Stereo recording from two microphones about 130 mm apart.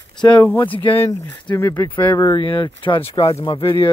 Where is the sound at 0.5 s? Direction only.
15° left (ahead or behind).